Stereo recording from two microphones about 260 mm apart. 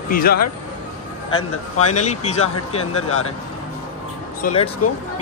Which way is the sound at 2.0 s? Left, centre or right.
Left.